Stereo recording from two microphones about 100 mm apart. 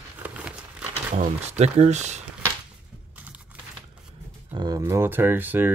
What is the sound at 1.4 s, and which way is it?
Speech, 90° right.